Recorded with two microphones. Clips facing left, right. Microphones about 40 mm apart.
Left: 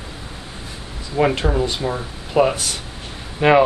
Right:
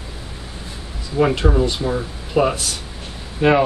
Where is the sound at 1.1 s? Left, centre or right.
Centre.